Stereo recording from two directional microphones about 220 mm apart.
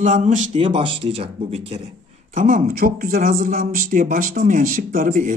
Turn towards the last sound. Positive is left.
turn(degrees=-40)  # may be behind; listen again after turning